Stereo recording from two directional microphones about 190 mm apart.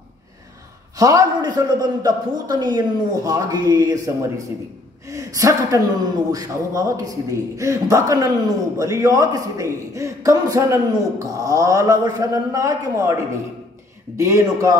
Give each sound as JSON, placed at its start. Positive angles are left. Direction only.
{"t": 0.9, "sound": "a man's voice", "side_deg": -20}
{"t": 14.1, "sound": "speech", "side_deg": -15}